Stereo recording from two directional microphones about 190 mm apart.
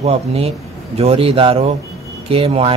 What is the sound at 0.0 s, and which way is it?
A man's voice, 30° right (ahead or behind).